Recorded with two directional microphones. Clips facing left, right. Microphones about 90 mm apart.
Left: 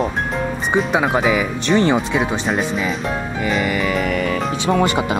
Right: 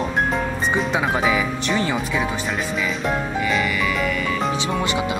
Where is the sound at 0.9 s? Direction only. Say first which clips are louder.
Left 4 dB; 20° left (ahead or behind).